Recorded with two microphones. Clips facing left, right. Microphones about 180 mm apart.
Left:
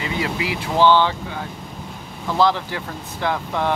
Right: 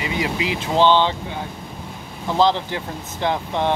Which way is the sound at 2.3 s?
20° right (ahead or behind).